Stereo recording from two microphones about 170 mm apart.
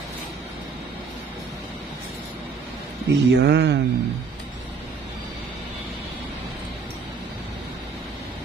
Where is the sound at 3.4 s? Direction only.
90° right.